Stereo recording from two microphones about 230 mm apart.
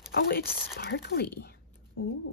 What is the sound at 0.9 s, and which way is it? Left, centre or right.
Speech, left.